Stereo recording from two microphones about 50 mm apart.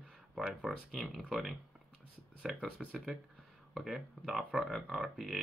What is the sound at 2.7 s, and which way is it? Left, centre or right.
Speech, centre.